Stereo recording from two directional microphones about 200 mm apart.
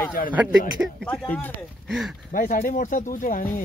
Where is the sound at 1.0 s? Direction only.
5° left (ahead or behind).